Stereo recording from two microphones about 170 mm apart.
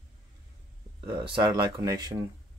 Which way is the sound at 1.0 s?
25° right (ahead or behind).